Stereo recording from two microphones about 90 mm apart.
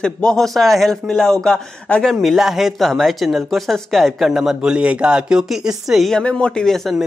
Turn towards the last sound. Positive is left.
turn(degrees=5)  # may be behind; listen again after turning